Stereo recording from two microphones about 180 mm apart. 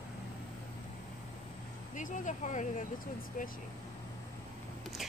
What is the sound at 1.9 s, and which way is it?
Speech, 45° left (ahead or behind).